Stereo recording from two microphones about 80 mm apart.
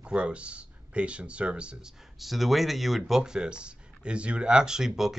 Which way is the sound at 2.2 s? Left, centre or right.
Centre.